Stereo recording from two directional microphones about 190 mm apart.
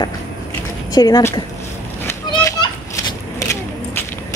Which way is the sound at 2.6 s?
20° left (ahead or behind).